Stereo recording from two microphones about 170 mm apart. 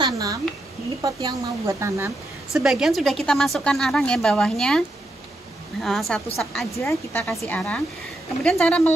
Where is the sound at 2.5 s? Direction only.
Centre (ahead or behind).